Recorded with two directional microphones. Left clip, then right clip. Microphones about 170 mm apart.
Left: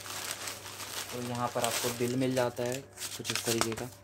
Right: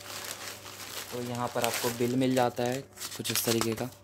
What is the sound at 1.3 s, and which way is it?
Speech, 45° right (ahead or behind).